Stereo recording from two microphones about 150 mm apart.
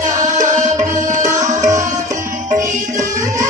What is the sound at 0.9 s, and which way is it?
Tabla, 55° right (ahead or behind).